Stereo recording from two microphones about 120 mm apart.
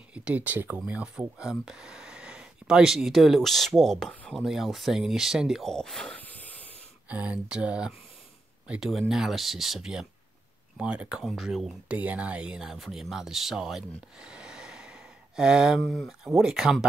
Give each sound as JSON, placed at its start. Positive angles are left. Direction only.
{"t": 0.1, "sound": "speech", "side_deg": -10}
{"t": 7.1, "sound": "speech", "side_deg": -10}